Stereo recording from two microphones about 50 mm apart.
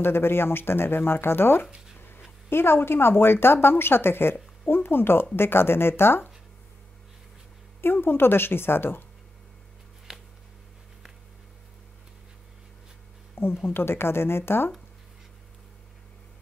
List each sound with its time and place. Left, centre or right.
0.0 s a woman's voice: left
2.0 s a sound: left
2.5 s a woman's voice: left
7.8 s a woman's voice: left
10.1 s a sound: centre
13.7 s a woman's voice: left